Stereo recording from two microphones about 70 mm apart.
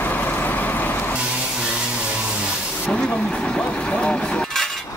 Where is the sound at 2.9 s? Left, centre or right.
Centre.